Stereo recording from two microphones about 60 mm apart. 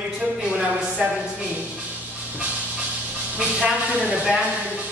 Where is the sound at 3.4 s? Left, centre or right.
Centre.